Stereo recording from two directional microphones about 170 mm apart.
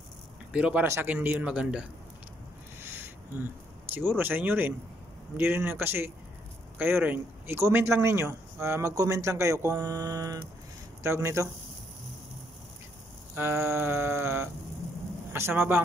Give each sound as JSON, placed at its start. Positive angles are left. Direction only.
{"t": 0.5, "sound": "speech", "side_deg": -5}
{"t": 2.8, "sound": "a sound", "side_deg": -10}
{"t": 3.9, "sound": "speech", "side_deg": -10}
{"t": 13.3, "sound": "speech", "side_deg": -15}